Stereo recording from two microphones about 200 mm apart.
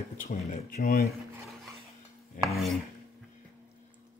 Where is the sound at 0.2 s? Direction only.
35° left (ahead or behind).